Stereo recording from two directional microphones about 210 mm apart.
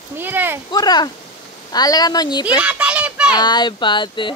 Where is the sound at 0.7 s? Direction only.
20° left (ahead or behind).